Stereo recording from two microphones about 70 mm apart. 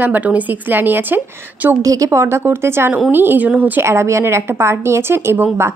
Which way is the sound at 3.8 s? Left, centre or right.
Right.